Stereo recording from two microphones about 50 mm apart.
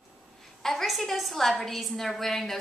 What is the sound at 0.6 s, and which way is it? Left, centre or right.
A woman's voice, centre.